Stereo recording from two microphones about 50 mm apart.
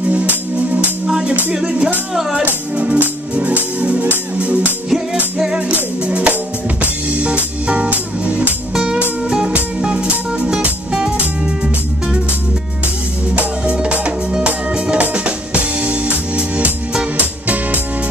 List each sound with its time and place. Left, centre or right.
0.1 s music: right
2.7 s music: right
6.0 s music: right
8.7 s music: centre
13.3 s music: right